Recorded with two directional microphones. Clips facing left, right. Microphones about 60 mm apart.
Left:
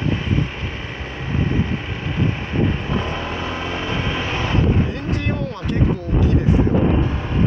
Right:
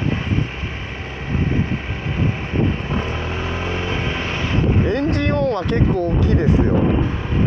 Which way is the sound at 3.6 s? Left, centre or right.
Centre.